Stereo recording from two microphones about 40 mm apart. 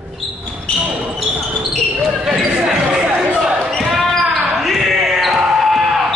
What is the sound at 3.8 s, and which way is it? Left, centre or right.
Basketball bounce, centre.